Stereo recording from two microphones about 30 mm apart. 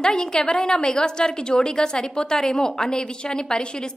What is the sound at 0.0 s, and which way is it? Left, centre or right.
A woman's voice, left.